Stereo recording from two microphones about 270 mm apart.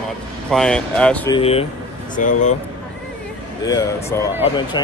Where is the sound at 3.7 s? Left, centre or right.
Centre.